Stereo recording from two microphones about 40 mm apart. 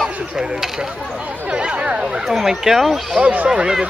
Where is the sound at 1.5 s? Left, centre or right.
Right.